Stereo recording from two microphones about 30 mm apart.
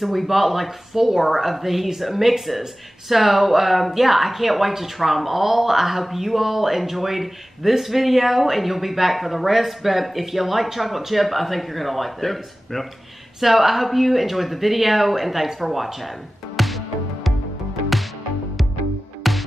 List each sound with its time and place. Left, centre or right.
0.0 s speech: centre
13.4 s speech: centre
16.5 s music: centre
19.2 s music: centre